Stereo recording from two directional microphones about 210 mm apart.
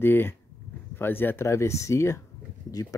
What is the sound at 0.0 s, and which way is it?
Speech, 10° left (ahead or behind).